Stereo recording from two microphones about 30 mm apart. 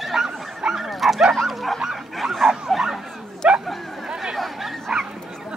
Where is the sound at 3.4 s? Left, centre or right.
Right.